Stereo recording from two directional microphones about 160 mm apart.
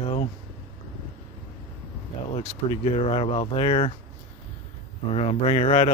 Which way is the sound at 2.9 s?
35° left (ahead or behind).